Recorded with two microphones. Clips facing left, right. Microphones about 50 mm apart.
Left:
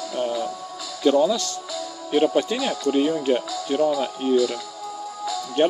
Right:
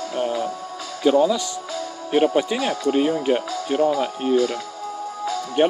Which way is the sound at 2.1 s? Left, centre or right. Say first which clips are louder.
Right 1 dB; right.